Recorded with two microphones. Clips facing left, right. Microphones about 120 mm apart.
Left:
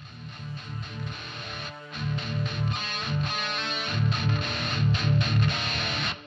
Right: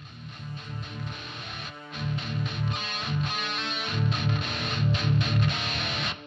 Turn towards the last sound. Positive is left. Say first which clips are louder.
# left 1 dB
turn(degrees=0)  # may be behind; listen again after turning